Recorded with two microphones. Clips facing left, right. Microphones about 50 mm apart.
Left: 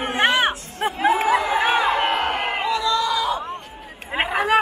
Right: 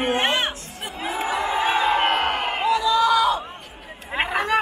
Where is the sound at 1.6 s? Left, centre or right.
Left.